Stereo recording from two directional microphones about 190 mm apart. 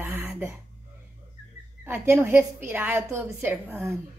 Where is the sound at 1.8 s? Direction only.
10° right (ahead or behind).